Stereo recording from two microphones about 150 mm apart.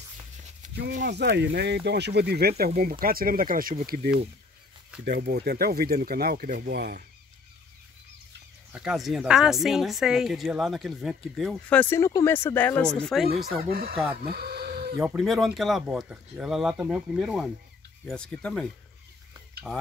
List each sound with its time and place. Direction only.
0.6 s speech: 60° right (ahead or behind); by 4.2 s 85° right
5.3 s speech: 90° right
8.7 s speech: centre (ahead or behind)
11.8 s speech: 15° left (ahead or behind)
12.9 s speech: centre (ahead or behind)
13.7 s speech: 90° right
14.2 s a sound: 90° right
15.0 s speech: centre (ahead or behind)